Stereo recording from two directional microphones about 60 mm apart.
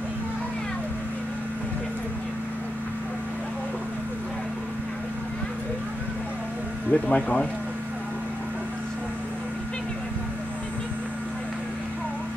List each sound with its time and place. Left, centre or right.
6.9 s speech: left